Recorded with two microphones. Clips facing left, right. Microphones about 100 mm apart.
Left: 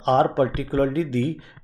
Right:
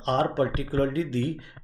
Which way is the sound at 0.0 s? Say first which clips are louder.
Left 6 dB; 30° left (ahead or behind).